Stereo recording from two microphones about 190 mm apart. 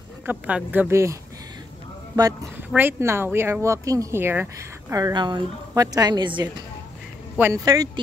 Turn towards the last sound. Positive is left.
turn(degrees=-20)  # may be behind; listen again after turning